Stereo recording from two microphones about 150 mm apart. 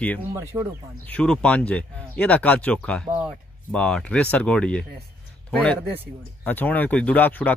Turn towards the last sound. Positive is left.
turn(degrees=10)  # may be behind; listen again after turning